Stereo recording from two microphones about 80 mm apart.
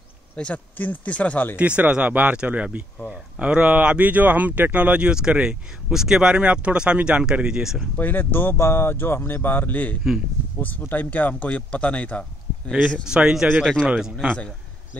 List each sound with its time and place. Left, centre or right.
0.4 s speech: centre
1.6 s speech: centre
7.9 s speech: left
13.0 s speech: centre